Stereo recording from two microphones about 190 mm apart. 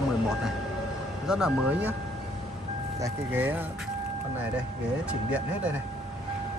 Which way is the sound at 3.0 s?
10° right (ahead or behind).